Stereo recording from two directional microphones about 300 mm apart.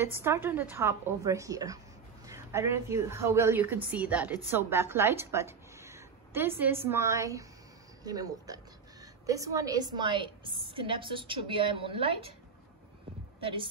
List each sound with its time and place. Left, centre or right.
0.0 s a woman's voice: centre